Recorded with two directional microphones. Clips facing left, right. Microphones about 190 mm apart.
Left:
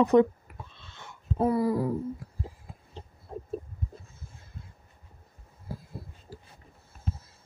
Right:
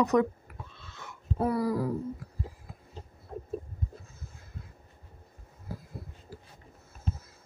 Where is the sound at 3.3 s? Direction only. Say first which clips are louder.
Left 1 dB; 30° left (ahead or behind).